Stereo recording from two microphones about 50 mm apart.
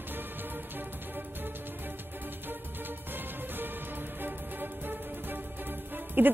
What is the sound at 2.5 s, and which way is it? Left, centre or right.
Music, right.